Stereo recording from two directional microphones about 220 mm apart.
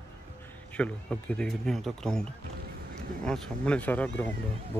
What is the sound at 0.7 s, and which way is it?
Speech, 5° left (ahead or behind).